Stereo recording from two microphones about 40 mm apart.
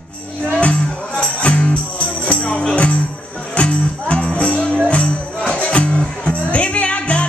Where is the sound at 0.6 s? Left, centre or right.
Left.